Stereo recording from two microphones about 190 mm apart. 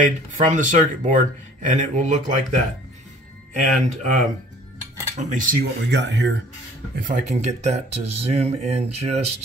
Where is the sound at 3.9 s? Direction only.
40° right (ahead or behind); by 6.4 s 65° right (ahead or behind).